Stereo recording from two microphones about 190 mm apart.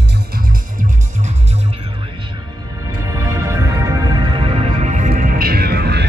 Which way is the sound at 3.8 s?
25° right (ahead or behind).